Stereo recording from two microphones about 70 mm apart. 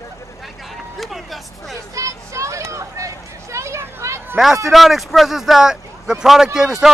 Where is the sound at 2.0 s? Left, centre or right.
Right.